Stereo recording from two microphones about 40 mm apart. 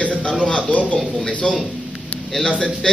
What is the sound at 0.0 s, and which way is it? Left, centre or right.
A man's voice, left.